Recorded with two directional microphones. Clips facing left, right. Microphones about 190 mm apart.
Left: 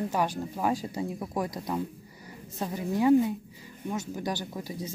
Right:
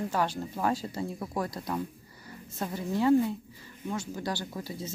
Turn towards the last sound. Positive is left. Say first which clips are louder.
# left 1 dB
turn(degrees=15)  # may be behind; listen again after turning